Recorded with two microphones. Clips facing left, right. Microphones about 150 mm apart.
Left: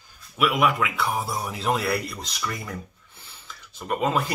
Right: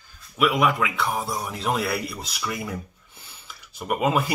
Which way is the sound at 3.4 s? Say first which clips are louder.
Right 3 dB; 10° right (ahead or behind).